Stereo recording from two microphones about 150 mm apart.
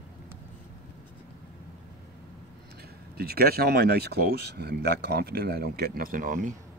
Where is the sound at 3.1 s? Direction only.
90° right; by 6.4 s 65° right (ahead or behind).